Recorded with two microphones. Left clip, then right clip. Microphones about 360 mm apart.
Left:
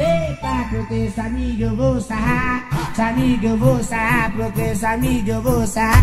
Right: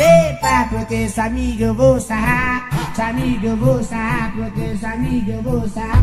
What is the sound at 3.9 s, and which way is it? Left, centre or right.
Music, centre.